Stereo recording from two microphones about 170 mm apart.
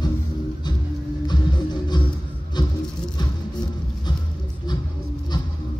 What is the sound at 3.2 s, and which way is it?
Music, 25° left (ahead or behind).